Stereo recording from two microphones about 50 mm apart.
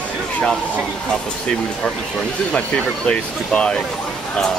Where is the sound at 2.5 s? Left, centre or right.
Left.